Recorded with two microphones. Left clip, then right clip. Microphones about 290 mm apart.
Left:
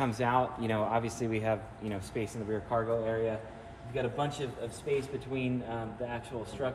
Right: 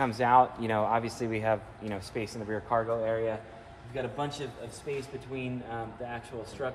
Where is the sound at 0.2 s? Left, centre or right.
Right.